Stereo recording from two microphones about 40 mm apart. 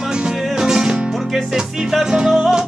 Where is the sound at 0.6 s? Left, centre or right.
Centre.